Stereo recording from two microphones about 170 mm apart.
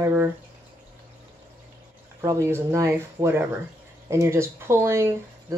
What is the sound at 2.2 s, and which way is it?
Speech, 20° right (ahead or behind).